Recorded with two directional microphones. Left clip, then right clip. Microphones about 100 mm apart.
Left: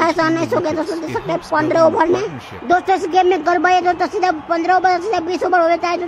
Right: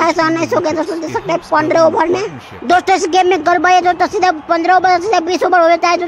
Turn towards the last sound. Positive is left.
turn(degrees=-45)  # may be behind; listen again after turning